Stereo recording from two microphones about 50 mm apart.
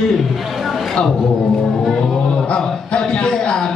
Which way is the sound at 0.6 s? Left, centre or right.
Centre.